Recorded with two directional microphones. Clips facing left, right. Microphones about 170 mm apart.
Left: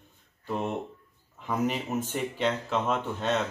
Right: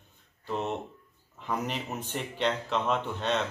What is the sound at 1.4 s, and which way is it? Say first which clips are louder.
Speech: left 4 dB; 5° left (ahead or behind).